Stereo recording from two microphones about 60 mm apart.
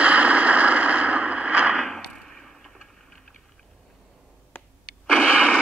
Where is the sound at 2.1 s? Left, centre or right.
Centre.